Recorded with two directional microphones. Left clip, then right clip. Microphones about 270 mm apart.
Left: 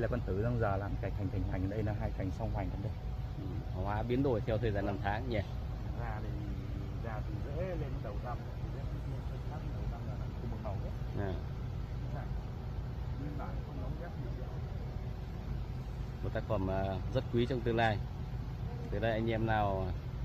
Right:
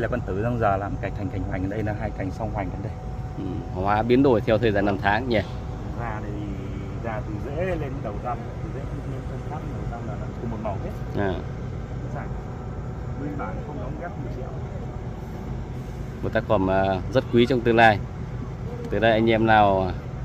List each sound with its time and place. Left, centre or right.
0.0 s speech: left
3.8 s speech: centre
11.2 s speech: centre
16.3 s speech: centre
18.9 s speech: centre